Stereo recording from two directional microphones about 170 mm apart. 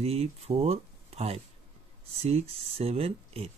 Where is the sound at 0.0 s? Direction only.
35° right (ahead or behind).